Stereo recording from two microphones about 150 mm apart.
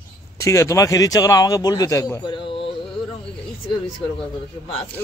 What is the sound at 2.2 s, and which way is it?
Speech, 35° left (ahead or behind).